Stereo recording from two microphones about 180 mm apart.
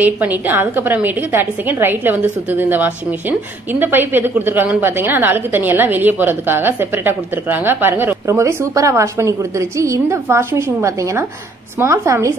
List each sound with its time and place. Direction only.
0.0 s a woman's voice: 10° right (ahead or behind)